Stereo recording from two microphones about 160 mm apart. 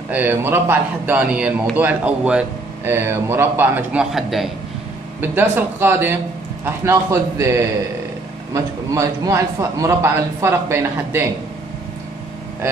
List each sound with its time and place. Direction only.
0.1 s speech: 10° right (ahead or behind)